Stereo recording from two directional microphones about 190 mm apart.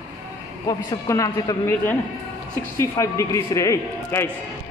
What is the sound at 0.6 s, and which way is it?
A man's voice, 20° left (ahead or behind).